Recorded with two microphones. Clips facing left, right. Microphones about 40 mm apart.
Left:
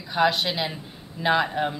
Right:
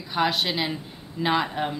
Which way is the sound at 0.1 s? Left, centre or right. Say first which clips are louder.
Left 2 dB; centre.